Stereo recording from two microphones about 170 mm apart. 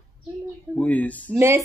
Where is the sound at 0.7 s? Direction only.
10° left (ahead or behind).